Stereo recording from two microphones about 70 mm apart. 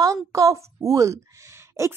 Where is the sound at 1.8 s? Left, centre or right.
Right.